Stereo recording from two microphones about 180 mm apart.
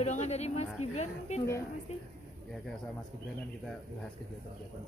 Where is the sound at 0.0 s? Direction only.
40° left (ahead or behind).